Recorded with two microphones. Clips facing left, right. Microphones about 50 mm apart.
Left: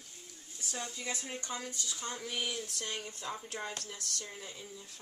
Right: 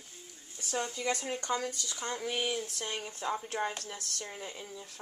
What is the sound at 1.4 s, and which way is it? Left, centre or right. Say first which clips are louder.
Speech: right 8 dB; right.